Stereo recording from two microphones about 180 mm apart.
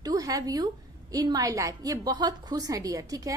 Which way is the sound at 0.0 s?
20° right (ahead or behind).